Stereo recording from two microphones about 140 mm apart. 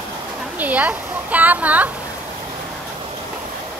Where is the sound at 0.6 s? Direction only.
10° right (ahead or behind).